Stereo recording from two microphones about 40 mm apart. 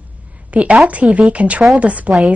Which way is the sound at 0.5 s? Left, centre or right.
Right.